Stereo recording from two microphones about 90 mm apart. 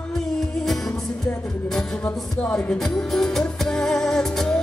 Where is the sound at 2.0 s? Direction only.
10° left (ahead or behind).